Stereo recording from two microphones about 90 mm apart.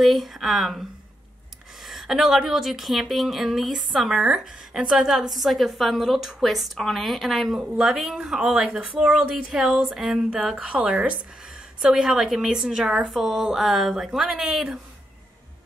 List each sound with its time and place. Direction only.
0.0 s a woman's voice: centre (ahead or behind)